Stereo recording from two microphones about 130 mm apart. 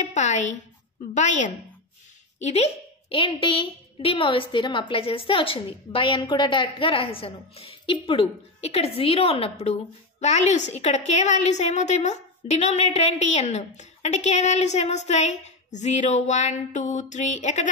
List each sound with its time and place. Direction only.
0.0 s a woman's voice: 65° left (ahead or behind)
2.3 s speech: 55° left (ahead or behind)
10.2 s a woman's voice: 60° left (ahead or behind)